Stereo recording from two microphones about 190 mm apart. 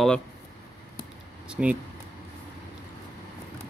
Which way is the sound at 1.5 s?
5° right (ahead or behind).